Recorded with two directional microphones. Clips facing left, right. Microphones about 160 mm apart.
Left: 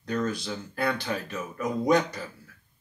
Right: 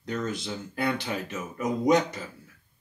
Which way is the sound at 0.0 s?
20° right (ahead or behind).